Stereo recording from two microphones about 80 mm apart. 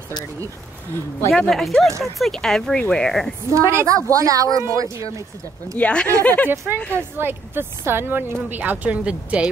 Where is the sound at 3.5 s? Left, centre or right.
Right.